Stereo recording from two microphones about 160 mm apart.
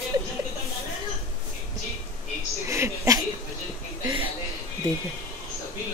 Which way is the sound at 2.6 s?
20° right (ahead or behind).